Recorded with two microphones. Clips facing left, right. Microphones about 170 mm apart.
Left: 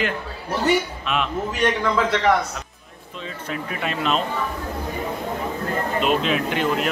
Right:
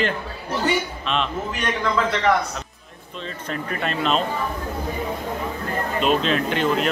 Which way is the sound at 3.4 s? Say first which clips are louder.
Right 1 dB; 5° left (ahead or behind).